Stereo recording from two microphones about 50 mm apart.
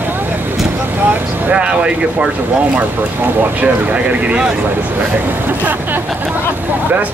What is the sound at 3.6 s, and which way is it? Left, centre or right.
Speech, right.